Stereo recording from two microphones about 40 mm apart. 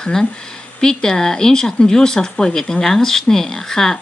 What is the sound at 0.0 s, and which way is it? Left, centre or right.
Speech, centre.